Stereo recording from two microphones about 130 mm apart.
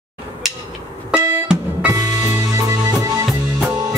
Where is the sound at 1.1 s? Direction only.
5° right (ahead or behind).